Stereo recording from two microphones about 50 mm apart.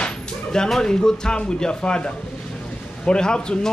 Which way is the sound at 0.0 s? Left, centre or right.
Centre.